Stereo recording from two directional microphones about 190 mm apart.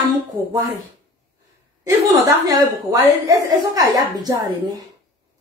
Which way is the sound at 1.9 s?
15° right (ahead or behind).